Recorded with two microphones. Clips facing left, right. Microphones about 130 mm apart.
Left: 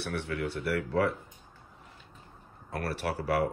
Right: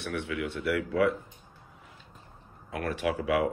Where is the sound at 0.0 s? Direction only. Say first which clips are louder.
Right 1 dB; 35° left (ahead or behind).